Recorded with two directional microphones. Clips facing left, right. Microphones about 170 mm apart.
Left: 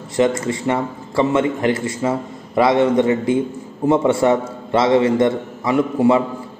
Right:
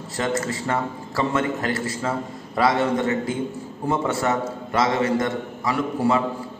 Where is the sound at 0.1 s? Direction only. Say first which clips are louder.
Left 7 dB; 20° left (ahead or behind).